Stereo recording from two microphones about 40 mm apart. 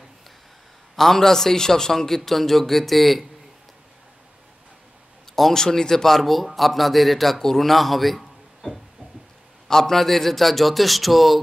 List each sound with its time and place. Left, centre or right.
0.9 s a man's voice: centre
5.3 s a man's voice: centre